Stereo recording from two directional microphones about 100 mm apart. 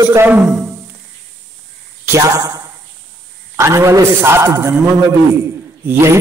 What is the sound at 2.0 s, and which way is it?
A man's voice, 30° right (ahead or behind).